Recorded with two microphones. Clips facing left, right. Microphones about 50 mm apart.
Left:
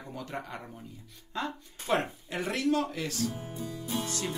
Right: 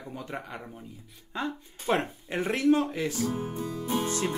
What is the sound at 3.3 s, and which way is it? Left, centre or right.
Music, right.